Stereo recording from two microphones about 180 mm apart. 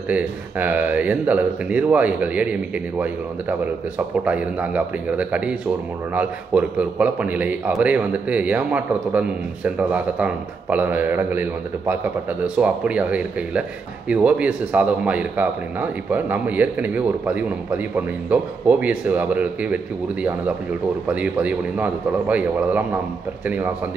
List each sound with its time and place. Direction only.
0.1 s a man's voice: 10° right (ahead or behind)
4.2 s a man's voice: 10° right (ahead or behind)
21.1 s a man's voice: 5° right (ahead or behind)